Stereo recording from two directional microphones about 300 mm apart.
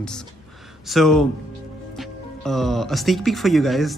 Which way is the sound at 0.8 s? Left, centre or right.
Centre.